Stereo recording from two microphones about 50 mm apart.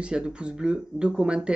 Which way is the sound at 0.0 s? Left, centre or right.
Centre.